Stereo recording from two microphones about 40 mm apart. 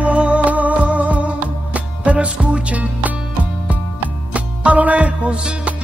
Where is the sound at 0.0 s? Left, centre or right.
Right.